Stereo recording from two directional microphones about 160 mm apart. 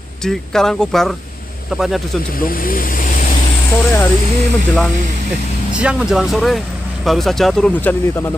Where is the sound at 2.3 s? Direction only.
60° left (ahead or behind).